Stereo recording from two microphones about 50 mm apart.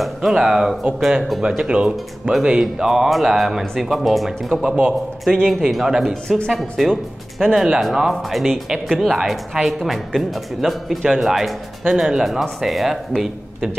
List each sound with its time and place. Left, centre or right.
0.0 s speech: centre
1.6 s speech: right; by 4.6 s centre
4.6 s speech: right
5.5 s speech: centre
6.2 s speech: centre
6.5 s speech: centre